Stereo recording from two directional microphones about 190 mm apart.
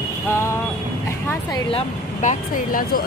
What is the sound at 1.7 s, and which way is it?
Speech, 40° left (ahead or behind).